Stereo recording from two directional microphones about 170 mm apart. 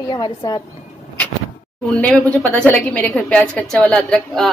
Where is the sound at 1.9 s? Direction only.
5° left (ahead or behind).